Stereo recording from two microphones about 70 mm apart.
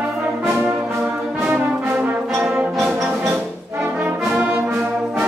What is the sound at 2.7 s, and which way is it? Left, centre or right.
Brass instrument, centre.